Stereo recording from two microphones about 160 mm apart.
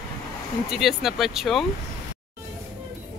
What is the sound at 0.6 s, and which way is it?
Speech, centre (ahead or behind).